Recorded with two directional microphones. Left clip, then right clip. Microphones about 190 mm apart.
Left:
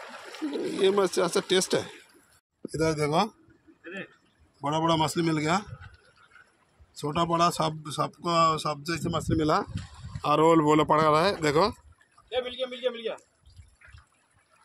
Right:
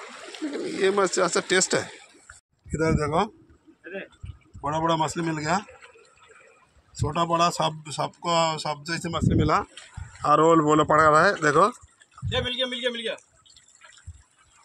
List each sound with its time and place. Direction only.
0.5 s speech: 10° left (ahead or behind)
4.6 s speech: centre (ahead or behind)
7.0 s speech: 10° right (ahead or behind)
9.1 s speech: 5° left (ahead or behind)
12.3 s speech: 15° left (ahead or behind)